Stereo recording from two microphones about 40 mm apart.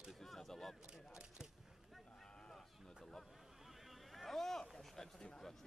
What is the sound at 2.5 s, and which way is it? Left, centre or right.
Sheep, centre.